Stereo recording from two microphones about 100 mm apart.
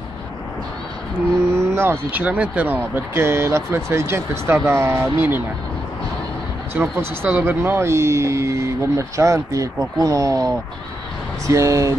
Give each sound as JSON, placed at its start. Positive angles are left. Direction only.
{"t": 1.6, "sound": "speech", "side_deg": -25}
{"t": 6.8, "sound": "speech", "side_deg": -15}